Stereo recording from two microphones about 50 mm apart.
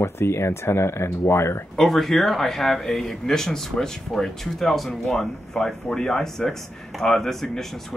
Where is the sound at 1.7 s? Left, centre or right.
Centre.